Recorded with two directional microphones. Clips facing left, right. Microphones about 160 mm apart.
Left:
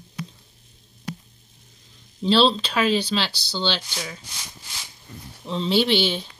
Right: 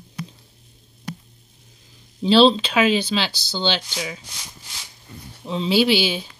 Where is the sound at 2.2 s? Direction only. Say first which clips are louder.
Right 4 dB; centre (ahead or behind).